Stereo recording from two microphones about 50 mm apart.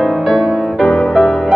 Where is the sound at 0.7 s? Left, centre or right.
Centre.